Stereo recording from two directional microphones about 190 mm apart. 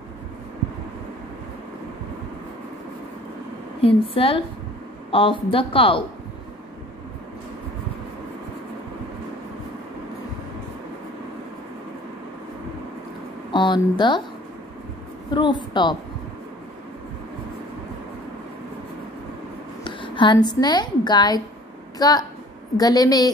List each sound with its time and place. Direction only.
3.8 s speech: 30° left (ahead or behind)
13.5 s speech: 25° left (ahead or behind)
15.3 s speech: 25° left (ahead or behind)
19.8 s a woman's voice: 25° left (ahead or behind)